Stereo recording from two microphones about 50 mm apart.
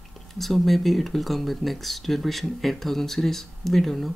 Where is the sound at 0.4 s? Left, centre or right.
Centre.